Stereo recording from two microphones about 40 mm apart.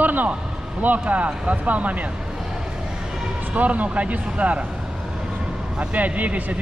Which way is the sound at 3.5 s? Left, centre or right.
Right.